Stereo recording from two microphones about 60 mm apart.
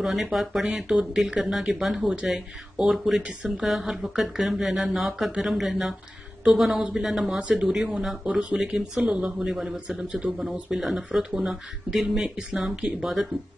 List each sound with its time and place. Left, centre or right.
0.0 s speech: centre